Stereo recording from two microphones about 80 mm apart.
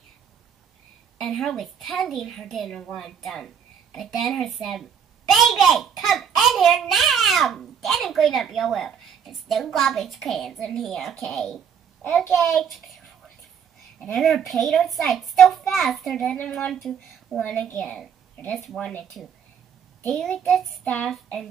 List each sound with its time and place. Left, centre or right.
1.2 s a child's voice: centre
14.1 s a child's voice: centre
18.8 s child singing: centre
20.1 s a child's voice: centre
20.8 s child singing: centre